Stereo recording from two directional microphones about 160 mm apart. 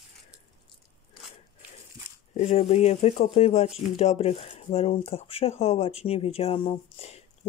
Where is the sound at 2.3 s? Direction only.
40° left (ahead or behind).